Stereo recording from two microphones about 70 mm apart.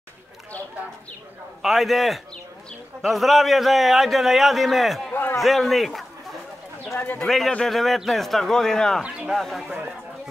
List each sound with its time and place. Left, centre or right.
1.6 s speech: centre
5.1 s a sound: left
5.4 s speech: centre
7.2 s a man's voice: centre
9.0 s speech: centre
9.3 s speech: centre
9.7 s speech: right